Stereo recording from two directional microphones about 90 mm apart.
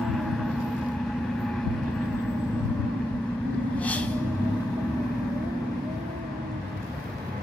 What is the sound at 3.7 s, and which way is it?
Vehicle, 15° left (ahead or behind).